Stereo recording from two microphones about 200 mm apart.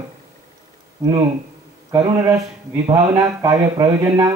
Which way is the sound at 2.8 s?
20° right (ahead or behind).